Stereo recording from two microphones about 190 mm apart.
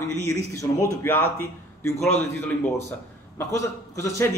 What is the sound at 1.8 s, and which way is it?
Speech, 10° left (ahead or behind).